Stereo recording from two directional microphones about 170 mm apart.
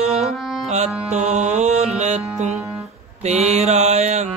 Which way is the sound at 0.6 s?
40° right (ahead or behind).